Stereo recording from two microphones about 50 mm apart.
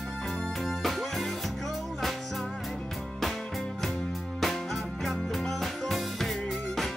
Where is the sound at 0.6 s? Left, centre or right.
Centre.